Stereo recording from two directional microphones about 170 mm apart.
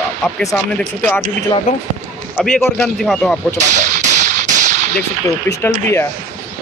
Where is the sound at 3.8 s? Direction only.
45° right (ahead or behind).